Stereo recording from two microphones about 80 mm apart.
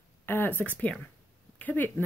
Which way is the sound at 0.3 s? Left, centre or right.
Left.